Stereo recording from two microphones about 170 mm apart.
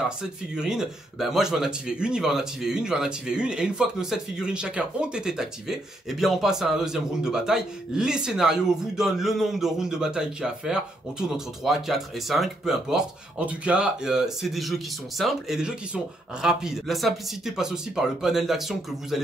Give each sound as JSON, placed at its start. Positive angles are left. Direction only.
{"t": 0.0, "sound": "speech", "side_deg": -5}